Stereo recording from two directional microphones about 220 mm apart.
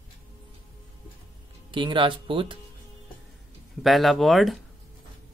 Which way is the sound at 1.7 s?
20° right (ahead or behind).